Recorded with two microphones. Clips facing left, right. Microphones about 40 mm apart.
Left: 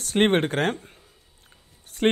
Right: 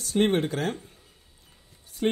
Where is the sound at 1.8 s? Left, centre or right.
Left.